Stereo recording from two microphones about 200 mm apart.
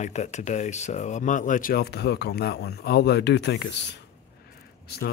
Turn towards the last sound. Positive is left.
turn(degrees=50)  # may be behind; listen again after turning